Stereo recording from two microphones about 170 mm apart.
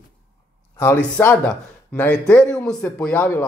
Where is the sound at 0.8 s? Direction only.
15° left (ahead or behind).